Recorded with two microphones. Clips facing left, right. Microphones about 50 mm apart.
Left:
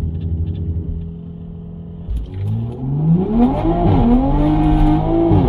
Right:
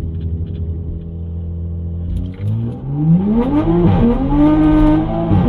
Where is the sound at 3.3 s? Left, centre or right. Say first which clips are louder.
Even; right.